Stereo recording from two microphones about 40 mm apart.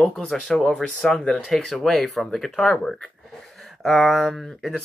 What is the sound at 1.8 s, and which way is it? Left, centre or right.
Speech, centre.